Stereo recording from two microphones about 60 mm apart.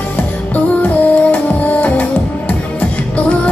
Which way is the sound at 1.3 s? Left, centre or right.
Left.